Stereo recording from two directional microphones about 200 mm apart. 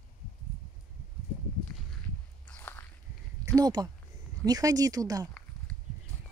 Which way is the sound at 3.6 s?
20° right (ahead or behind).